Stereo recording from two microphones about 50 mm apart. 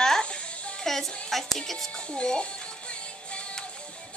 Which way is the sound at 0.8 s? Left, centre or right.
Centre.